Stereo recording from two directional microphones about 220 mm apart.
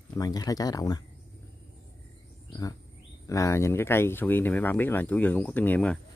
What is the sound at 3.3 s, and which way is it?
Speech, 15° left (ahead or behind).